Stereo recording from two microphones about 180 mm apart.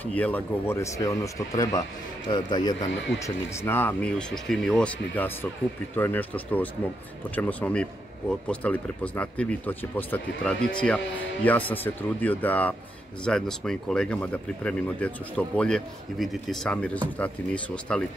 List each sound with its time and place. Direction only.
0.0 s speech: 10° left (ahead or behind)
3.4 s speech: 10° left (ahead or behind)